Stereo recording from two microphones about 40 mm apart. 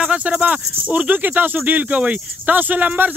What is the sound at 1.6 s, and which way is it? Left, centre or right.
Speech, right.